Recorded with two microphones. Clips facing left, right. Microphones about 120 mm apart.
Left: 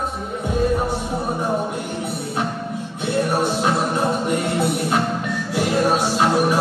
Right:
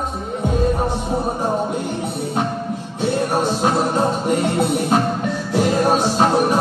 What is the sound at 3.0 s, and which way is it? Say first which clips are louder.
Music: right 2 dB; 30° right (ahead or behind).